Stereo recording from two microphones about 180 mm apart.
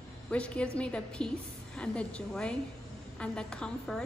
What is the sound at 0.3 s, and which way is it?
A woman's voice, 5° left (ahead or behind).